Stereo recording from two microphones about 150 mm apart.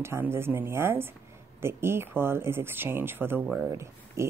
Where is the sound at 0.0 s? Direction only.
15° right (ahead or behind).